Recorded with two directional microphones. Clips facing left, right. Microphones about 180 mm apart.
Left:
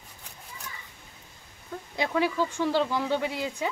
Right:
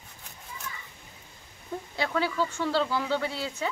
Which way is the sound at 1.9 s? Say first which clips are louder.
Left 2 dB; 15° left (ahead or behind).